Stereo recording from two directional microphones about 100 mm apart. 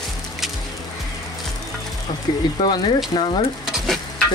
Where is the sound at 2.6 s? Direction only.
45° left (ahead or behind).